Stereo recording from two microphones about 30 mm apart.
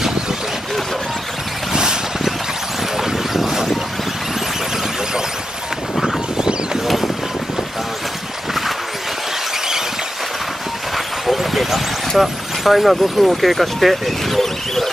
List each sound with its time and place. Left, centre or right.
1.7 s boat: right
3.0 s vehicle: centre
6.0 s a sound: centre
11.2 s vehicle: centre
12.2 s speech: centre